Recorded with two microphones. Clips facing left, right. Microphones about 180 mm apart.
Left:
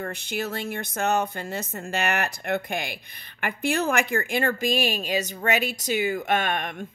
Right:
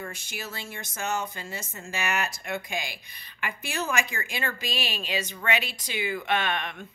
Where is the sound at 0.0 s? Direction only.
60° left (ahead or behind).